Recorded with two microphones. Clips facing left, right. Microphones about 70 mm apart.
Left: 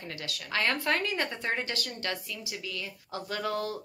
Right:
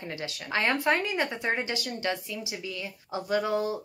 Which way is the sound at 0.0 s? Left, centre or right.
Right.